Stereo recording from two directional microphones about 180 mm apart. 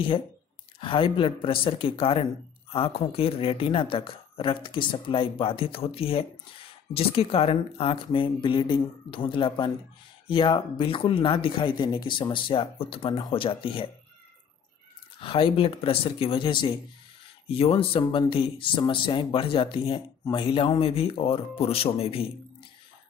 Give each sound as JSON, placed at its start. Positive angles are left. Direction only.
{"t": 0.7, "sound": "speech", "side_deg": 30}
{"t": 15.1, "sound": "speech", "side_deg": 30}